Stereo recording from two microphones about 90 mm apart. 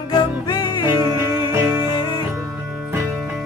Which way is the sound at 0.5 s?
50° left (ahead or behind).